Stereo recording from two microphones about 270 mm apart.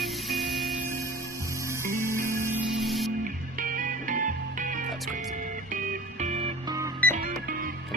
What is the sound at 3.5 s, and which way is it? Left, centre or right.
Music, right.